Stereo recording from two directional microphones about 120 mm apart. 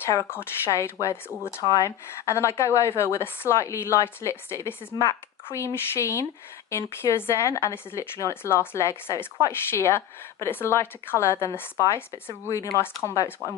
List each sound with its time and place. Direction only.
0.3 s a woman's voice: 20° left (ahead or behind)